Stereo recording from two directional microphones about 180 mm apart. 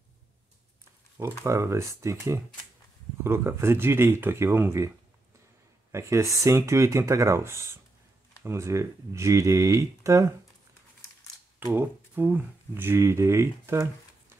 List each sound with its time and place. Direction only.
1.4 s speech: 15° right (ahead or behind)
11.6 s speech: 10° right (ahead or behind)